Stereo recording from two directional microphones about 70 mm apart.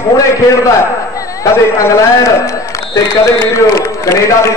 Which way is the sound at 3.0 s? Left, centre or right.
Left.